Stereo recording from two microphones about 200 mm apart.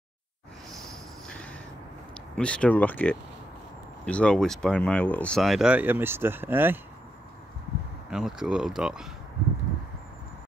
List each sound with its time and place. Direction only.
1.2 s a sound: 5° left (ahead or behind)
2.3 s speech: 5° left (ahead or behind); by 6.8 s 10° right (ahead or behind)
8.1 s speech: 5° right (ahead or behind)